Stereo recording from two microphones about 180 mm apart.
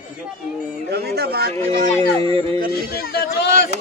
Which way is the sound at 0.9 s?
60° right (ahead or behind).